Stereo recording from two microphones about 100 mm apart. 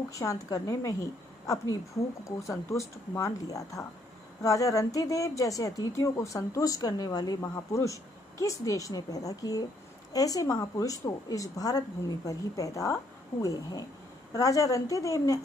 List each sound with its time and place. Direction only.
0.1 s a woman's voice: 35° left (ahead or behind)
2.2 s a woman's voice: 30° left (ahead or behind)